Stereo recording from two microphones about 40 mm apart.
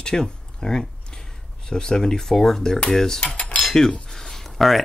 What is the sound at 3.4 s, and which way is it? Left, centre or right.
Cutlery, left.